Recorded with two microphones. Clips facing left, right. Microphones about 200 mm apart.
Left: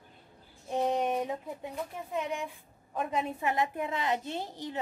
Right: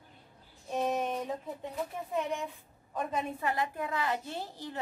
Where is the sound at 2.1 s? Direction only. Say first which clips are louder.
Even; centre (ahead or behind).